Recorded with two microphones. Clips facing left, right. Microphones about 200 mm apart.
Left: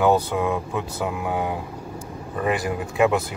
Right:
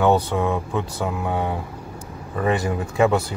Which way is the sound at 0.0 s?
10° left (ahead or behind).